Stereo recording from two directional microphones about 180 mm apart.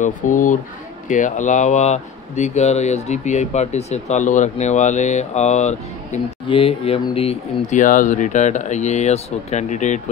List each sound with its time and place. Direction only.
0.0 s speech: 45° left (ahead or behind)